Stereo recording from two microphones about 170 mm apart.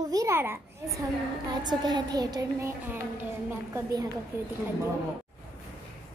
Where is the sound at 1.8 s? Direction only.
25° right (ahead or behind).